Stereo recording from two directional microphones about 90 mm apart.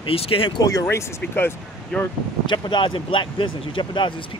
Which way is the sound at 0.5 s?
40° left (ahead or behind).